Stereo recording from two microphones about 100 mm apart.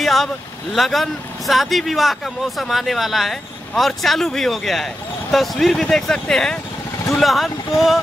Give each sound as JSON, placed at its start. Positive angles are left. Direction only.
{"t": 0.0, "sound": "vehicle", "side_deg": 0}
{"t": 0.7, "sound": "speech", "side_deg": 0}